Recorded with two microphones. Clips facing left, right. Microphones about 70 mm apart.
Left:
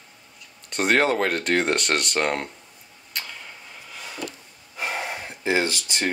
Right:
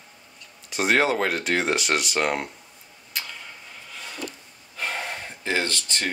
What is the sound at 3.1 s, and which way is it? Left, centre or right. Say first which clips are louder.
Tick-tock: even; centre.